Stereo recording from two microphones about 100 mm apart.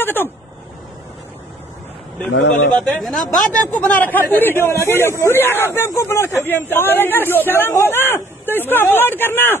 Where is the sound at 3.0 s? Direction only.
Centre (ahead or behind).